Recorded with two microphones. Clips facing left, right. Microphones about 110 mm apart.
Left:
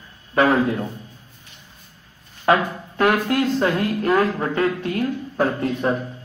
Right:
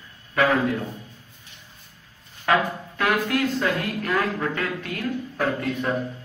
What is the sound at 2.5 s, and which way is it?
A man's voice, 30° left (ahead or behind).